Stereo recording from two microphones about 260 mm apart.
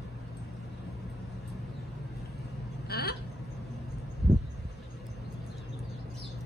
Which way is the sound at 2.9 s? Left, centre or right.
Left.